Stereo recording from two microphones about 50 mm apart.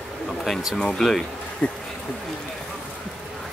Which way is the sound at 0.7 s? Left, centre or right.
Centre.